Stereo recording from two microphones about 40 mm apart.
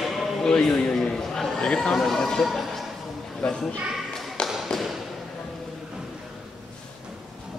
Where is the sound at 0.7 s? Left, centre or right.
Centre.